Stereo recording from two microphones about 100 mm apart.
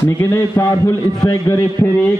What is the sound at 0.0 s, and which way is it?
A man's voice, 25° left (ahead or behind).